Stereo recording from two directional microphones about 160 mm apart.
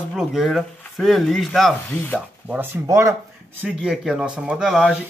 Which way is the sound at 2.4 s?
10° right (ahead or behind).